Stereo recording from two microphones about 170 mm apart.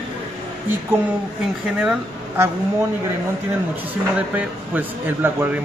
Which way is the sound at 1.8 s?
10° right (ahead or behind).